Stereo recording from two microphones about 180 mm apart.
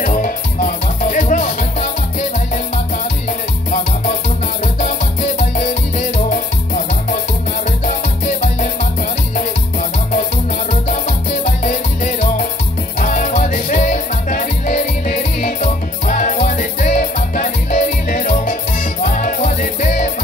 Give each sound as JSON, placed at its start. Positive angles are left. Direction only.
{"t": 0.0, "sound": "music", "side_deg": 45}
{"t": 5.4, "sound": "music", "side_deg": 45}
{"t": 10.7, "sound": "music", "side_deg": 45}